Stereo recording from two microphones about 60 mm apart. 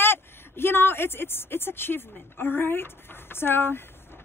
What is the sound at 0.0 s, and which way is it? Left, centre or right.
A woman's voice, left.